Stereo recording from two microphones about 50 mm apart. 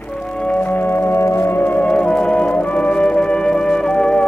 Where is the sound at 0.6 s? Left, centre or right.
Left.